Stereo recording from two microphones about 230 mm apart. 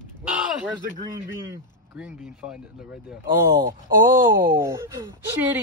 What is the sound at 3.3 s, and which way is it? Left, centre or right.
Speech, right.